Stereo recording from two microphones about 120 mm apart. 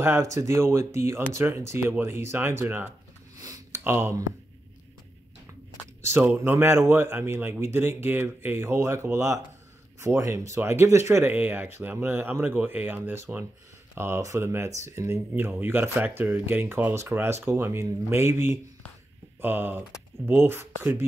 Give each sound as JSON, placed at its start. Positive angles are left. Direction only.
{"t": 0.0, "sound": "speech", "side_deg": -25}
{"t": 3.3, "sound": "a sound", "side_deg": -30}
{"t": 3.8, "sound": "speech", "side_deg": -20}
{"t": 6.0, "sound": "speech", "side_deg": -20}